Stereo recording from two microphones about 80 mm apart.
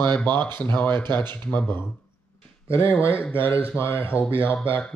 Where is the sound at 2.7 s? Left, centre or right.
Left.